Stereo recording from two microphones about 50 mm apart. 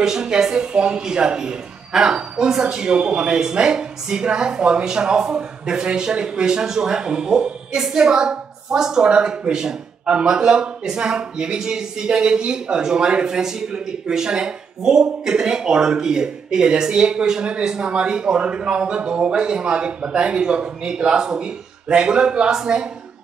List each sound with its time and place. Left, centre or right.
0.0 s speech: centre